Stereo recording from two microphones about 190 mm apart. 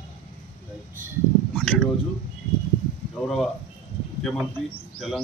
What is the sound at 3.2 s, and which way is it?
Speech, centre (ahead or behind).